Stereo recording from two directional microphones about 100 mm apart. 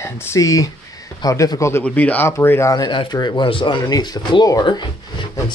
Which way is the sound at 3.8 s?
40° left (ahead or behind).